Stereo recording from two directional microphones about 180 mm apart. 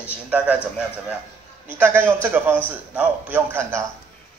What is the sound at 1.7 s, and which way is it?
A man's voice, 10° right (ahead or behind).